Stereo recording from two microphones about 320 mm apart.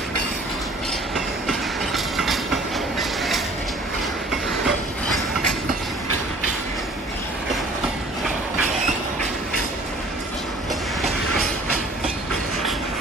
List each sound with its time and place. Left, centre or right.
2.1 s train: centre